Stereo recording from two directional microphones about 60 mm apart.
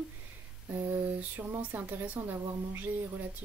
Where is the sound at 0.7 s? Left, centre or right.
Right.